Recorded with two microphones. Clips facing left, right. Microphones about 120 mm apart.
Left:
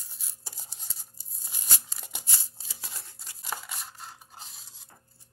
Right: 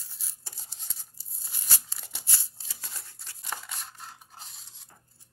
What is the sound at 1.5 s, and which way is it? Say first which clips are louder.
Crumpling: left 1 dB; 15° left (ahead or behind).